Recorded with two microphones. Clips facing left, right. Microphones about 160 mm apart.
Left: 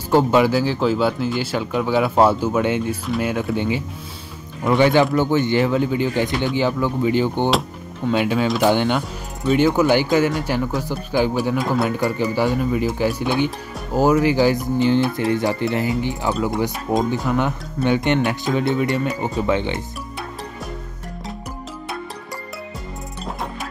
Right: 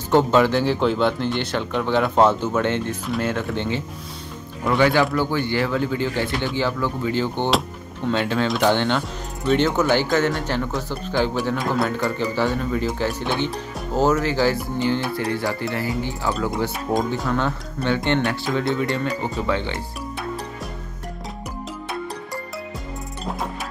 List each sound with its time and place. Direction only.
0.1 s speech: 10° left (ahead or behind)
4.6 s speech: 20° left (ahead or behind); by 12.1 s 5° left (ahead or behind)
12.2 s speech: 15° left (ahead or behind)